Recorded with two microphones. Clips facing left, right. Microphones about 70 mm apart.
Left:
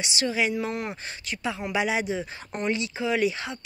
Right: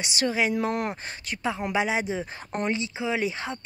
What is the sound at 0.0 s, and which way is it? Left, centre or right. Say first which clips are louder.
Speech: right 1 dB; right.